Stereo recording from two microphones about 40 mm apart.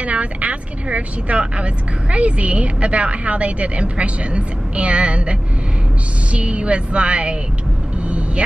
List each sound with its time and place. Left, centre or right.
0.0 s speech: right